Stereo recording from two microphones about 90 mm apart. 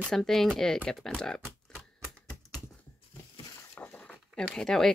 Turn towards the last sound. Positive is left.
turn(degrees=5)  # may be behind; listen again after turning